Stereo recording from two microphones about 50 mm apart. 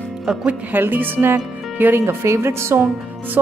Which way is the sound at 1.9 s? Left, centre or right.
Right.